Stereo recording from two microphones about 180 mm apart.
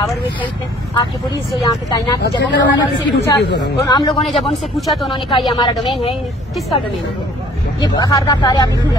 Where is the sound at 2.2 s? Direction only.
70° left (ahead or behind).